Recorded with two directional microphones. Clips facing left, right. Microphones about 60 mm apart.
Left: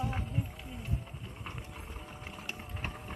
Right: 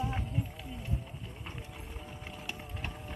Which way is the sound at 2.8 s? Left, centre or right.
Left.